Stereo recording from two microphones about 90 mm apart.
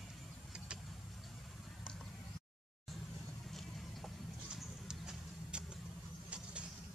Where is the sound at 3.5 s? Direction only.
Centre (ahead or behind).